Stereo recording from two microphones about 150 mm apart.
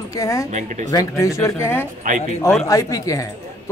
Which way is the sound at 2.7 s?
20° left (ahead or behind).